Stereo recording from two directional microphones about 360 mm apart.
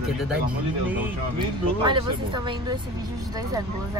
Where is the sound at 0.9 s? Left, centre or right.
Centre.